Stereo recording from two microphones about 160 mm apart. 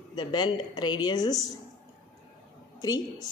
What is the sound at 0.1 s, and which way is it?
Speech, 25° left (ahead or behind).